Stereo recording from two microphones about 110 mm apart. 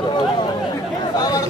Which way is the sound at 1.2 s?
35° left (ahead or behind).